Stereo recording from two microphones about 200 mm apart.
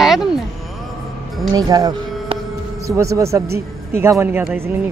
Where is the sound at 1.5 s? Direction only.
20° right (ahead or behind).